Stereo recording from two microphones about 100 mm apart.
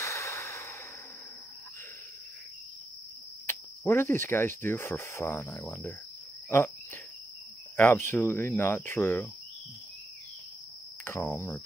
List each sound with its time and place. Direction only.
0.0 s a sound: 30° left (ahead or behind)
3.4 s speech: 20° left (ahead or behind)
5.7 s cricket: 15° left (ahead or behind)
7.7 s speech: 20° left (ahead or behind)
11.1 s speech: 25° left (ahead or behind)